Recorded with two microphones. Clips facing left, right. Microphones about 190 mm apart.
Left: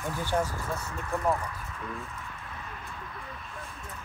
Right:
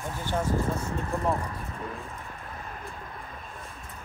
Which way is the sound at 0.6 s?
30° right (ahead or behind).